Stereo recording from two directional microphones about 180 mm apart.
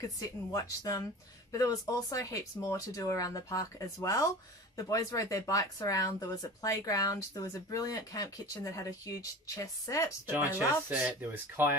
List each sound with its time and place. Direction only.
0.2 s speech: 20° left (ahead or behind)
10.9 s speech: 5° right (ahead or behind)